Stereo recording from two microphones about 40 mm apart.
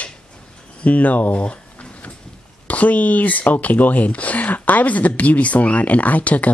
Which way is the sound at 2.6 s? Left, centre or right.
Left.